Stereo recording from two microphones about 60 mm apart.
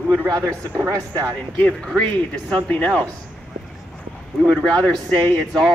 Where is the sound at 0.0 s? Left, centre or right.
Right.